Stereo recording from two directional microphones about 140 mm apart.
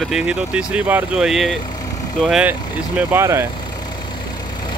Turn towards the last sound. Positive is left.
turn(degrees=-20)  # may be behind; listen again after turning